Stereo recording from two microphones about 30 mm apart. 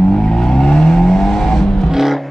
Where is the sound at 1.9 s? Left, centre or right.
Centre.